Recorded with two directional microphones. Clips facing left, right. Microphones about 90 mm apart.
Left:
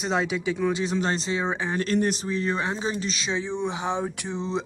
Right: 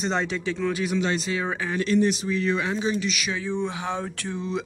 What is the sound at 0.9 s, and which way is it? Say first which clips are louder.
Speech: even; 35° left (ahead or behind).